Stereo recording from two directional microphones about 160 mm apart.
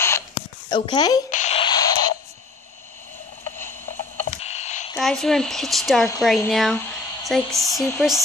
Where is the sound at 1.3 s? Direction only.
45° left (ahead or behind).